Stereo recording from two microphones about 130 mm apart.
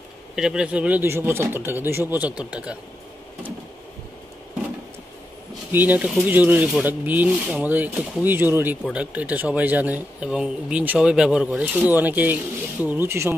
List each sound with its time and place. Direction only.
0.4 s speech: 5° right (ahead or behind)
5.7 s speech: 15° right (ahead or behind)